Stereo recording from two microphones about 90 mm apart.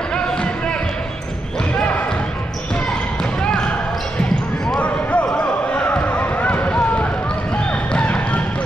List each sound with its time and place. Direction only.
0.1 s music: 10° left (ahead or behind)
1.8 s basketball bounce: 15° left (ahead or behind)
3.4 s basketball bounce: 10° left (ahead or behind)
4.7 s basketball bounce: 15° left (ahead or behind)
7.9 s a sound: 15° left (ahead or behind)